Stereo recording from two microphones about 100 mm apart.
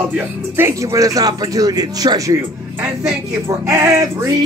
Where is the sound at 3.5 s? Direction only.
30° right (ahead or behind).